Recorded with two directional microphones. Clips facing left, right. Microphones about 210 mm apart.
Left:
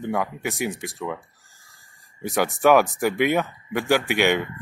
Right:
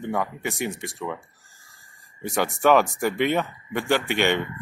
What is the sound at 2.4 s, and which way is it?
Speech, 10° left (ahead or behind).